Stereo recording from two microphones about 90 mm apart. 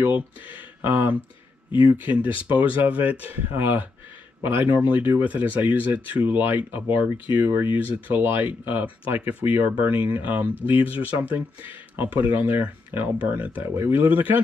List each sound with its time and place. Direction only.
0.0 s speech: 20° right (ahead or behind)